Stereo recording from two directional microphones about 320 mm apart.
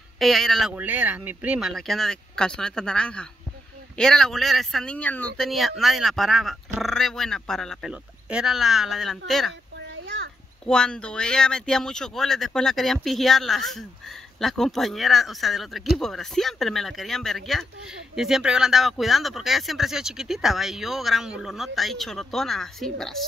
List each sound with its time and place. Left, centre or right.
0.2 s speech: centre
9.8 s a sound: right
10.6 s speech: centre